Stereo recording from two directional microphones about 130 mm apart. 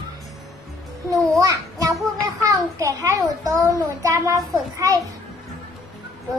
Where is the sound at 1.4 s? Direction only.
25° right (ahead or behind).